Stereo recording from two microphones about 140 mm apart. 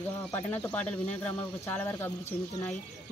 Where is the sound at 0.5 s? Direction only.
10° left (ahead or behind).